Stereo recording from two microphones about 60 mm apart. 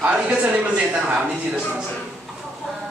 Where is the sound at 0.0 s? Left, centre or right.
Right.